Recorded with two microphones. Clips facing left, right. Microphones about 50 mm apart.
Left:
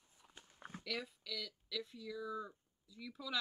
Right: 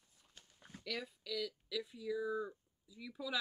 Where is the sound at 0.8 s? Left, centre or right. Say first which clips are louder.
Right 1 dB; centre.